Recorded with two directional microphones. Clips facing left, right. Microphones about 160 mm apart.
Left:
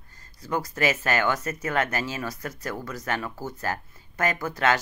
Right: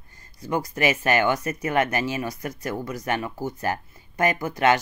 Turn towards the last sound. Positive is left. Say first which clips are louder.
# right 3 dB
turn(degrees=-15)  # may be behind; listen again after turning